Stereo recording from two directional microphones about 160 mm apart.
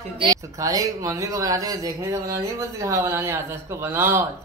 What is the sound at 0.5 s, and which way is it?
Speech, 20° right (ahead or behind).